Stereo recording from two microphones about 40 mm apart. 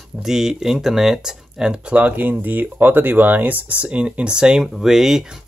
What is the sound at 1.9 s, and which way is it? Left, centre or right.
Speech, right.